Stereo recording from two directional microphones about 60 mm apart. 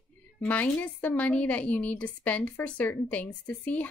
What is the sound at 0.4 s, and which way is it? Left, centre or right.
A woman's voice, left.